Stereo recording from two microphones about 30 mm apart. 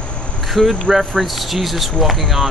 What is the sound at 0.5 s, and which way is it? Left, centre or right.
Speech, centre.